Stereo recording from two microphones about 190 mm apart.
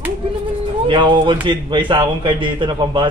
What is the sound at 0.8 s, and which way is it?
A man's voice, 25° right (ahead or behind).